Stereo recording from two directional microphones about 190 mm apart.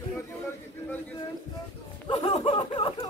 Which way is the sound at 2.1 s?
25° left (ahead or behind).